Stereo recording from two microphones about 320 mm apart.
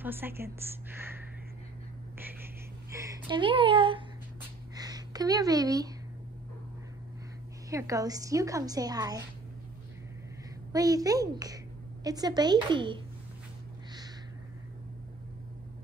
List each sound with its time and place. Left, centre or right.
0.0 s a woman's voice: centre
0.9 s a sound: centre
2.9 s speech: centre
4.7 s a sound: centre
7.7 s a woman's voice: centre
10.7 s a child's voice: centre